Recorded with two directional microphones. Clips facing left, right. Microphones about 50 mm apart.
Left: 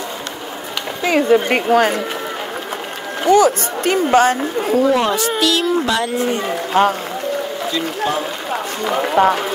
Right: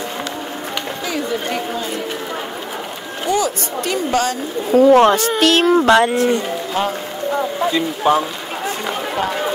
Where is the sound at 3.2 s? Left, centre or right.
Left.